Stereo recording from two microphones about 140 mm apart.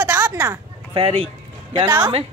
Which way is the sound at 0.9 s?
40° right (ahead or behind).